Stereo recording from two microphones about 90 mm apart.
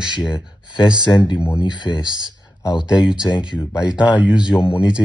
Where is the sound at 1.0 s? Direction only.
55° left (ahead or behind).